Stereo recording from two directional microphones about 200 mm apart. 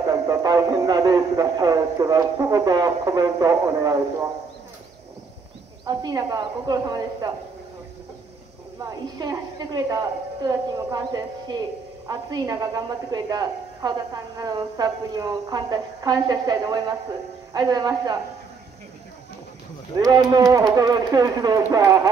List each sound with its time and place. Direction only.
0.3 s speech: 15° right (ahead or behind)
5.9 s a woman's voice: 20° right (ahead or behind)
8.8 s a woman's voice: 20° right (ahead or behind)
20.0 s a woman's voice: 20° right (ahead or behind)